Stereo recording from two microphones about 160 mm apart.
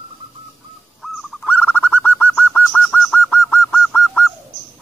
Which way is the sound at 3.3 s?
15° left (ahead or behind).